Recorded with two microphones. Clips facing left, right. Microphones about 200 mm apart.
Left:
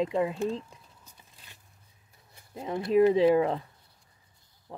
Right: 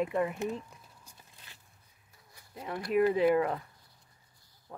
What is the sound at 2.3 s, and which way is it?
Speech, 25° left (ahead or behind).